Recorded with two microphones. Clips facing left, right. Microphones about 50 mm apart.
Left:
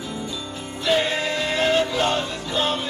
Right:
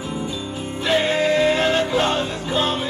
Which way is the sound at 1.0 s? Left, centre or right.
Right.